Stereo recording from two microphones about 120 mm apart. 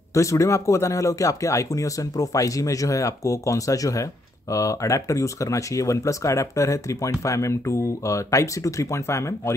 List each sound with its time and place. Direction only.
0.1 s speech: 25° left (ahead or behind)